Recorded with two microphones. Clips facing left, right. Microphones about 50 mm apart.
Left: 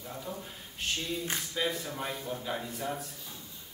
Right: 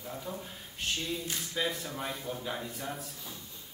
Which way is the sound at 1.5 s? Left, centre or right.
Centre.